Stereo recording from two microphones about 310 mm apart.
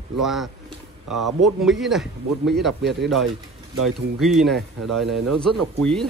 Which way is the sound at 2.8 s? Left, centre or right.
Right.